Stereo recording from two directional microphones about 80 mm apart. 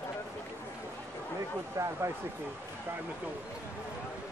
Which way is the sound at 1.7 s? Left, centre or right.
Right.